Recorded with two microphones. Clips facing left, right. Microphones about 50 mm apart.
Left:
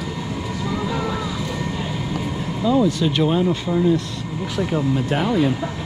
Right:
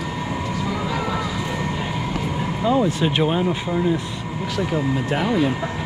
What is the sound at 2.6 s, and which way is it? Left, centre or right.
Speech, right.